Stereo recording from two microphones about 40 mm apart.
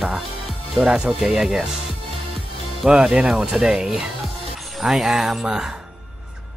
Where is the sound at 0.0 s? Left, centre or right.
Centre.